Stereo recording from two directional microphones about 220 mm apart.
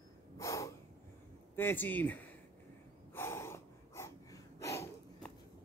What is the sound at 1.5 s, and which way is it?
Speech, 10° left (ahead or behind).